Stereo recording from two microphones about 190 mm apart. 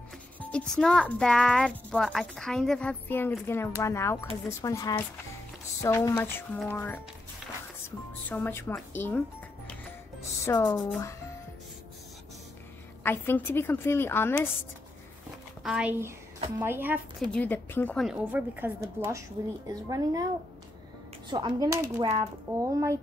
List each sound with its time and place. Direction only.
0.4 s a woman's voice: 5° left (ahead or behind)
8.3 s a woman's voice: 10° left (ahead or behind)
10.4 s a woman's voice: 15° left (ahead or behind)
13.0 s a woman's voice: 10° left (ahead or behind)
15.6 s a woman's voice: 5° right (ahead or behind)
17.3 s a woman's voice: 10° left (ahead or behind)
18.0 s a woman's voice: 10° right (ahead or behind)
21.3 s a woman's voice: 25° right (ahead or behind)